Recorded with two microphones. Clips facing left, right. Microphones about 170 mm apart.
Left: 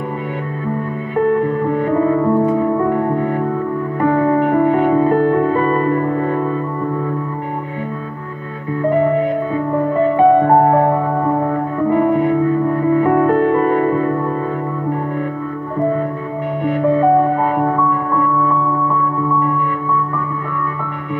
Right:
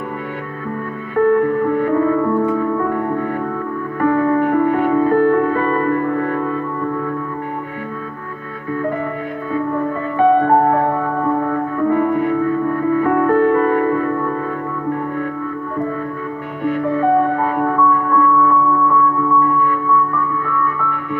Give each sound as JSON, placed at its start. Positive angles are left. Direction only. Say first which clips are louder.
{"t": 1.1, "sound": "music", "louder": "right 1 dB", "side_deg": 20}
{"t": 4.0, "sound": "music", "louder": "even", "side_deg": 25}
{"t": 10.1, "sound": "music", "louder": "left 1 dB", "side_deg": 20}
{"t": 12.7, "sound": "music", "louder": "left 2 dB", "side_deg": 25}
{"t": 17.6, "sound": "music", "louder": "even", "side_deg": 25}